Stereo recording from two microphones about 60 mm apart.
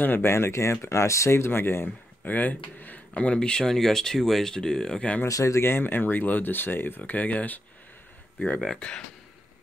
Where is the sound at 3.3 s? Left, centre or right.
Centre.